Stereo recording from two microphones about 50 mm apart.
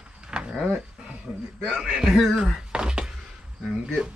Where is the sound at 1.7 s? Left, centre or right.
Centre.